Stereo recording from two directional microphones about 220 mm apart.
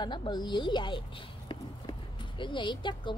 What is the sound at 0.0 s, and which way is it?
Speech, 20° left (ahead or behind).